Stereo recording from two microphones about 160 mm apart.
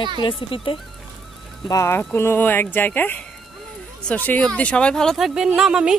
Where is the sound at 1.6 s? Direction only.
20° left (ahead or behind).